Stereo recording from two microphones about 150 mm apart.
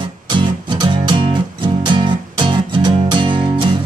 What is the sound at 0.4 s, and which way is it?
Music, 30° right (ahead or behind).